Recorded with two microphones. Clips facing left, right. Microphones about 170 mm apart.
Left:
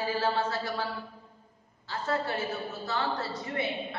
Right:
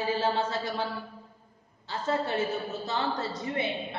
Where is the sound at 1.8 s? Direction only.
20° right (ahead or behind).